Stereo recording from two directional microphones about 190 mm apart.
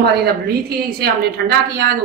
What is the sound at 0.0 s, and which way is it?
A woman's voice, 55° right (ahead or behind).